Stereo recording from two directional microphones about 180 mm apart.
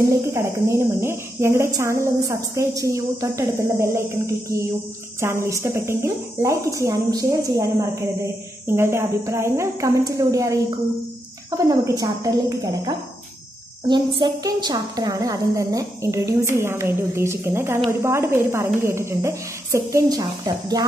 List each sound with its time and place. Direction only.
0.3 s a woman's voice: 15° right (ahead or behind)
5.2 s a woman's voice: 15° right (ahead or behind)